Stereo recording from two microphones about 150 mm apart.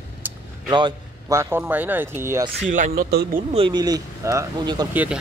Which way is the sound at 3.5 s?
40° right (ahead or behind).